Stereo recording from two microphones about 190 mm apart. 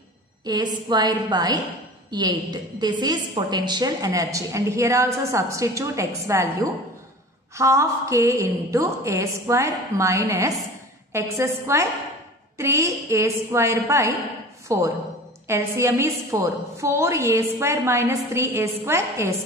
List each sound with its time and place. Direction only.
0.5 s a woman's voice: 20° right (ahead or behind)